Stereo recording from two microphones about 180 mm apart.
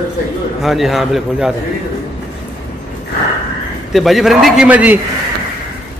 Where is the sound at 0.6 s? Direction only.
Centre (ahead or behind).